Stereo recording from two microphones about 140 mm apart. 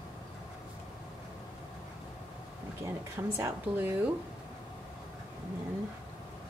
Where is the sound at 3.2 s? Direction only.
15° right (ahead or behind).